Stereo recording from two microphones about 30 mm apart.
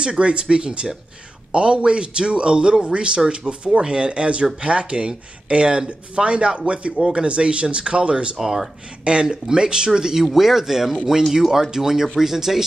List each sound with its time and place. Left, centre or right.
0.2 s speech: right
7.0 s speech: right
8.4 s speech: centre
9.0 s speech: right
10.2 s speech: centre